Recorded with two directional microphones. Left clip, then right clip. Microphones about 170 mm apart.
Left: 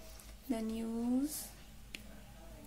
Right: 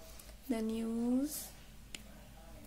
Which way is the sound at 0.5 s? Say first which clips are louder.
Right 2 dB; 20° right (ahead or behind).